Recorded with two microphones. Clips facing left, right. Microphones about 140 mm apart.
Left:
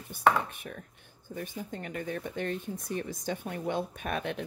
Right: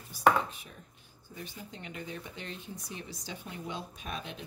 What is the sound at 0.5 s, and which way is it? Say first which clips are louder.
Speech: left 6 dB; 60° left (ahead or behind).